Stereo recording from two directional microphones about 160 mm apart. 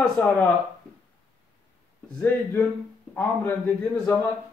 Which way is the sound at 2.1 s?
10° left (ahead or behind).